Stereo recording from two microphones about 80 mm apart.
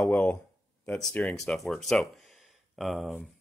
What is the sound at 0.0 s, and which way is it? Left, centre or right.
Speech, centre.